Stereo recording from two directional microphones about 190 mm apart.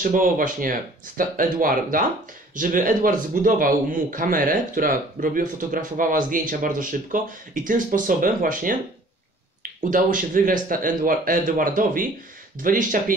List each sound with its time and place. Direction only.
0.0 s a man's voice: 45° right (ahead or behind)
9.8 s a man's voice: 45° right (ahead or behind)